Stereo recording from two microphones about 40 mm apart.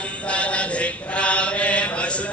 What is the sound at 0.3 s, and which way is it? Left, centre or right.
Chant, left.